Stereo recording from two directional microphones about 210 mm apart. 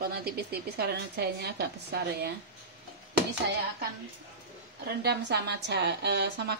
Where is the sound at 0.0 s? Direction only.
50° right (ahead or behind).